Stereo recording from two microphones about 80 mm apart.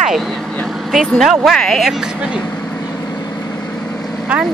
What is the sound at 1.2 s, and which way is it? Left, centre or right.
Speech, centre.